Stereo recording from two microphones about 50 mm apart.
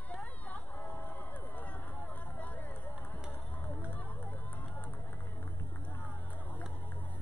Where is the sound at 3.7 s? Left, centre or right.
Left.